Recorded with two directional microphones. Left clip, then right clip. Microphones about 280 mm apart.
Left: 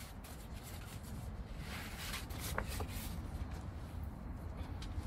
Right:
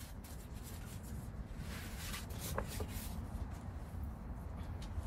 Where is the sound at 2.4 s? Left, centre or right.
Centre.